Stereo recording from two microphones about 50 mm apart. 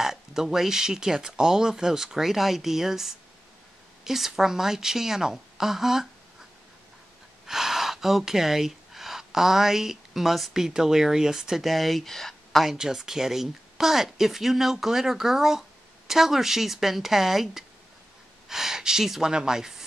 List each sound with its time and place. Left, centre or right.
0.0 s speech: centre
7.4 s speech: centre
12.6 s speech: centre